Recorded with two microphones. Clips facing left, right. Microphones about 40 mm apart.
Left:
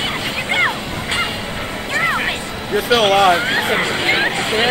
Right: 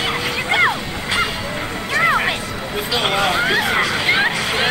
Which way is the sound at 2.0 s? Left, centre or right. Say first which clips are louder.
Right 2 dB; centre.